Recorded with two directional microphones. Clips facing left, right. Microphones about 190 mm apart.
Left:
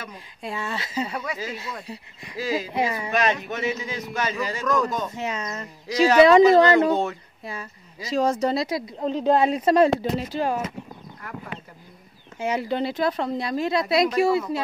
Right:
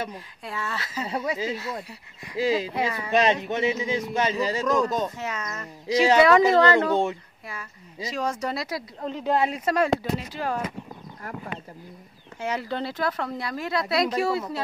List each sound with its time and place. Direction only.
0.1 s speech: 20° left (ahead or behind)
1.0 s a man's voice: 25° right (ahead or behind)
2.7 s speech: 20° left (ahead or behind)
3.1 s a man's voice: 25° right (ahead or behind)
5.1 s speech: 20° left (ahead or behind)
5.9 s a man's voice: 25° right (ahead or behind)
6.5 s speech: 15° left (ahead or behind)
8.1 s speech: 25° left (ahead or behind)
12.4 s speech: 15° left (ahead or behind)